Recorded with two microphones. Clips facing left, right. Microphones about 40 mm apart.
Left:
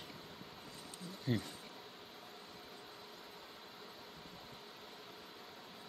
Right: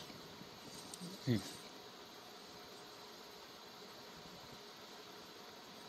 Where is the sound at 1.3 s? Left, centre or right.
Centre.